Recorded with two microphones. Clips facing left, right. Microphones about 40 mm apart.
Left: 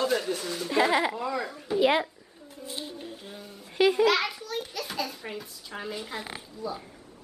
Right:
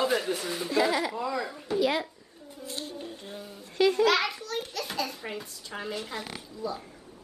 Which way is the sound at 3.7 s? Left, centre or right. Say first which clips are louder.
Left 1 dB; centre.